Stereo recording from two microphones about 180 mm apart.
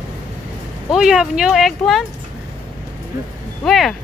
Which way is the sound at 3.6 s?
Centre (ahead or behind).